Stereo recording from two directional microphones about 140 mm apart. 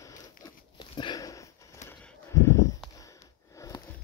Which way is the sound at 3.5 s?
25° left (ahead or behind).